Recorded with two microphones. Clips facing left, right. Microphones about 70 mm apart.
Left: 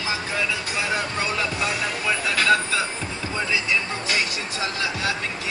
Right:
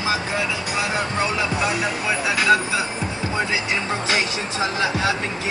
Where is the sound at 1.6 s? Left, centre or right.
Centre.